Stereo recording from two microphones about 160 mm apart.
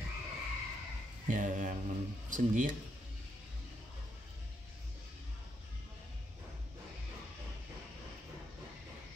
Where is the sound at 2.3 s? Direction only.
55° right (ahead or behind).